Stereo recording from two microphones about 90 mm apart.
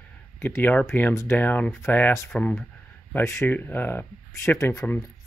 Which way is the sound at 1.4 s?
20° left (ahead or behind).